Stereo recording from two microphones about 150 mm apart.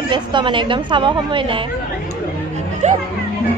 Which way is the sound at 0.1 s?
30° right (ahead or behind).